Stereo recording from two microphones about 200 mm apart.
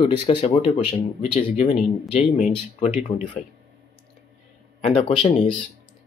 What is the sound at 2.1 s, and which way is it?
Speech, 30° left (ahead or behind).